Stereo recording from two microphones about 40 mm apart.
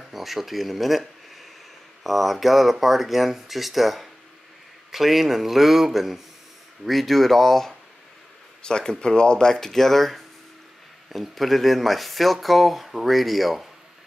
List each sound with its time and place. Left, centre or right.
0.1 s speech: centre
8.6 s speech: centre
9.5 s speech: centre